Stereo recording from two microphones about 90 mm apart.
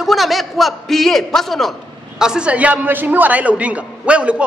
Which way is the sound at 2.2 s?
10° right (ahead or behind).